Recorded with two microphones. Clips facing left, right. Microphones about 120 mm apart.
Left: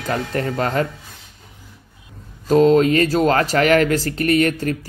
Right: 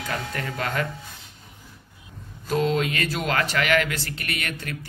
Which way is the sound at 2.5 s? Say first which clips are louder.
Left 10 dB; 40° left (ahead or behind).